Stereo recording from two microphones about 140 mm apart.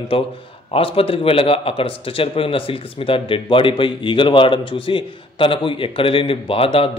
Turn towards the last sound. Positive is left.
turn(degrees=45)  # may be behind; listen again after turning